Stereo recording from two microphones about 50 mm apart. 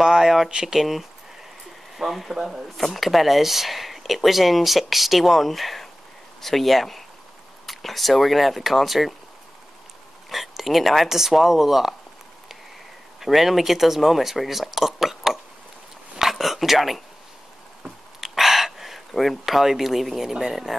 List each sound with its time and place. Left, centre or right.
0.0 s a sound: centre
0.5 s speech: centre
0.7 s speech: centre
10.3 s speech: centre
13.2 s speech: centre
16.2 s a sound: centre